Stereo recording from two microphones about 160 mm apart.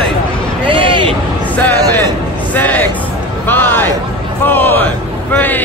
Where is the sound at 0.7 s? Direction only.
30° right (ahead or behind).